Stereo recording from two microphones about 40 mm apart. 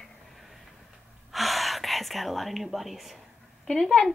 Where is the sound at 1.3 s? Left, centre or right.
Centre.